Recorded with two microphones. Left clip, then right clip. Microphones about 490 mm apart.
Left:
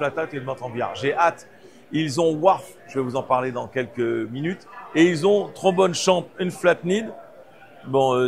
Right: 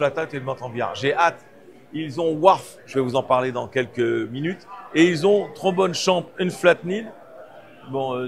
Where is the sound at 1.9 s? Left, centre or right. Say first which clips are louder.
Left 3 dB; right.